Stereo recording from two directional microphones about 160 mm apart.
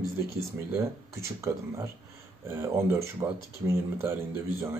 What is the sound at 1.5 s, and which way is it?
Speech, 15° right (ahead or behind).